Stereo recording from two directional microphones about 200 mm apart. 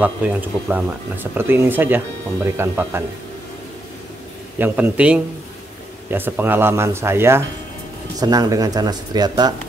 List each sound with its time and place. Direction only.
0.0 s speech: 10° right (ahead or behind)
4.6 s speech: 10° right (ahead or behind)